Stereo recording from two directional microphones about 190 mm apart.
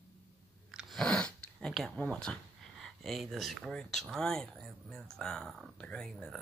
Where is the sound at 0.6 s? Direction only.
Centre (ahead or behind).